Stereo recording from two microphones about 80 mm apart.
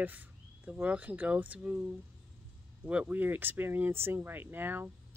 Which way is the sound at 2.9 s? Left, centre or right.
Centre.